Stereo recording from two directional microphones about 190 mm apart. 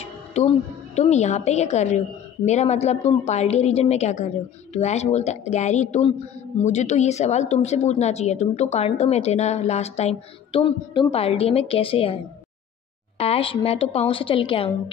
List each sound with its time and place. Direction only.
0.0 s music: 35° left (ahead or behind)
0.9 s a woman's voice: 35° left (ahead or behind)
13.2 s a woman's voice: 30° left (ahead or behind)